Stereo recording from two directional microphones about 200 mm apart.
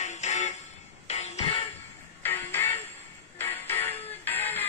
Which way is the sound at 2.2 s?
10° left (ahead or behind).